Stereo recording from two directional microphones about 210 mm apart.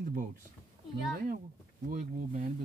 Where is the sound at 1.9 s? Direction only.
40° right (ahead or behind).